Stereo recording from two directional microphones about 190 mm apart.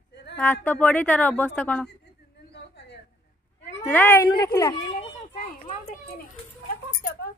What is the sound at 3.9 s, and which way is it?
Speech, 10° left (ahead or behind).